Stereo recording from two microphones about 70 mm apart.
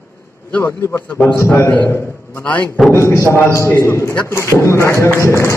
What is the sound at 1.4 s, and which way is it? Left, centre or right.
Speech, left.